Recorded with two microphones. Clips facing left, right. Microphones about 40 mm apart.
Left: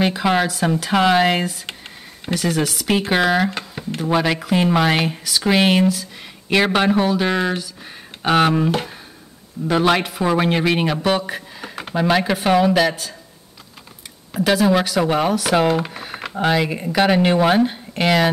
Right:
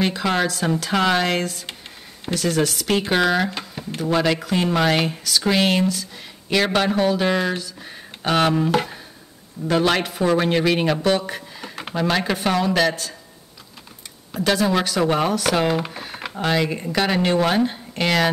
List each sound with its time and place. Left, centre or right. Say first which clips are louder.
0.0 s speech: left 3 dB; centre
3.4 s a sound: left 3 dB; centre
4.0 s speech: left 1 dB; centre
14.3 s speech: left 3 dB; centre